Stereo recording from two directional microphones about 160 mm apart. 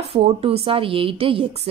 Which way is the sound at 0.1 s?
35° right (ahead or behind).